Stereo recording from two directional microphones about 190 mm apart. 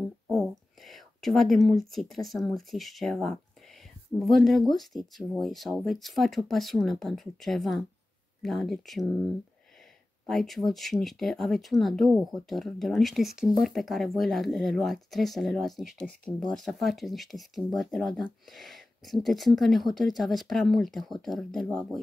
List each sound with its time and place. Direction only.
0.3 s speech: centre (ahead or behind)